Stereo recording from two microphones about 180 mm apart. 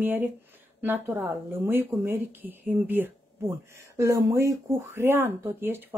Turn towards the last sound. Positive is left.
turn(degrees=-10)  # may be behind; listen again after turning